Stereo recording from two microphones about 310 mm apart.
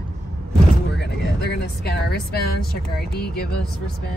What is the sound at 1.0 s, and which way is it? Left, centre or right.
Speech, left.